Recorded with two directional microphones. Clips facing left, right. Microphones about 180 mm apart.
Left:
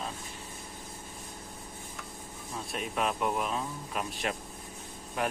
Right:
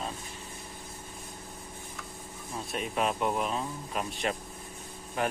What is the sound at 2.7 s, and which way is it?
Speech, centre (ahead or behind).